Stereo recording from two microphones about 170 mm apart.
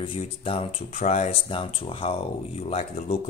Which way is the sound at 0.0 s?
35° left (ahead or behind).